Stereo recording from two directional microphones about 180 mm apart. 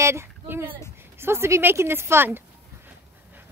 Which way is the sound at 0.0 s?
15° right (ahead or behind).